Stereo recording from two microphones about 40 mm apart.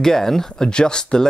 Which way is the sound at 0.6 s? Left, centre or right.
Left.